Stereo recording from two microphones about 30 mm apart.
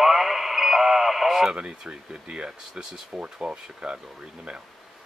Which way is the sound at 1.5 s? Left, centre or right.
Right.